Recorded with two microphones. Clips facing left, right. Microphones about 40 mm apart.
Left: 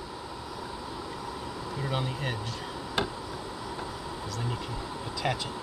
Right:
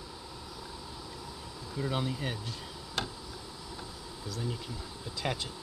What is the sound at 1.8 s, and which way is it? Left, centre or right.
Speech, left.